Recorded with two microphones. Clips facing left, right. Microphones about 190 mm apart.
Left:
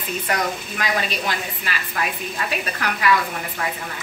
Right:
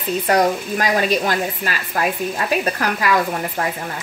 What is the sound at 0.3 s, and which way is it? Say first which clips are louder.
Speech: right 9 dB; 40° right (ahead or behind).